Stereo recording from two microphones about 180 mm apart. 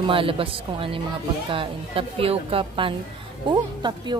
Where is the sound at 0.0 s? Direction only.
30° right (ahead or behind).